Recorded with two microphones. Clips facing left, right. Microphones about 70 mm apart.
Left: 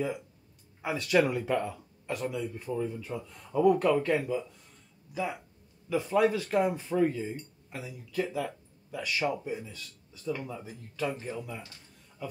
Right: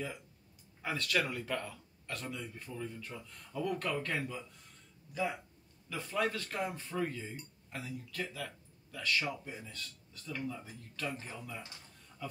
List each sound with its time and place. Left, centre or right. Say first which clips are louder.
0.8 s speech: left 8 dB; centre
2.2 s speech: left 10 dB; centre
12.2 s a sound: left 4 dB; centre